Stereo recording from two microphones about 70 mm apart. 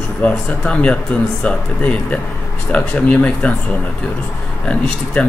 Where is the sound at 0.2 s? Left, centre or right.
Centre.